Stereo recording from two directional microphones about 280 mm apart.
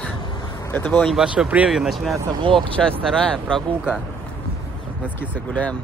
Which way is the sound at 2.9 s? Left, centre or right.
Centre.